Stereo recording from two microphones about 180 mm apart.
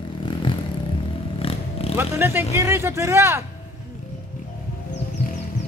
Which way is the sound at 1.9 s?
15° right (ahead or behind).